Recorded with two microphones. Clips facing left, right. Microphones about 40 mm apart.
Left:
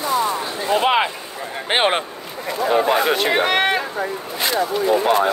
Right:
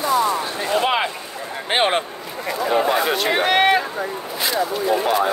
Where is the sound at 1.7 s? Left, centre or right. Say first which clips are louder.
Left 1 dB; left.